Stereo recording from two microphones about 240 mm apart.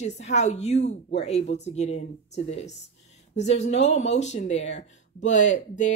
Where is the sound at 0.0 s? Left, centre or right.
Left.